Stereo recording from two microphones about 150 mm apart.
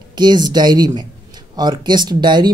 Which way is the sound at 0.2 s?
30° right (ahead or behind).